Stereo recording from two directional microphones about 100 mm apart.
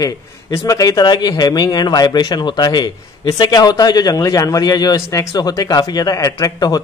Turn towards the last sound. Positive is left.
turn(degrees=40)  # may be behind; listen again after turning